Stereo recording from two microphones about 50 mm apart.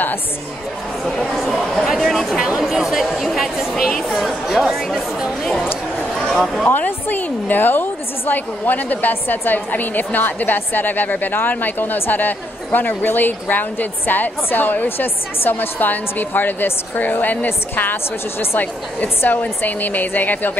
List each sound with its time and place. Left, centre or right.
1.3 s speech: centre
2.6 s speech: centre
6.1 s a sound: centre
6.8 s a woman's voice: left